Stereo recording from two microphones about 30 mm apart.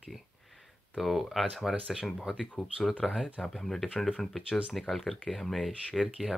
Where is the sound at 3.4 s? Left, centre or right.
Left.